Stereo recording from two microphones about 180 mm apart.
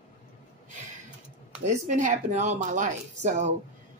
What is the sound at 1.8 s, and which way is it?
A woman's voice, 45° right (ahead or behind).